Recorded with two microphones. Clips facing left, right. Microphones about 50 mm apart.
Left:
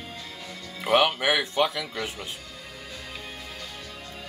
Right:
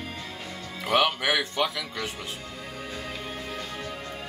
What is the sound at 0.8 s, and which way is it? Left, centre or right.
Speech, centre.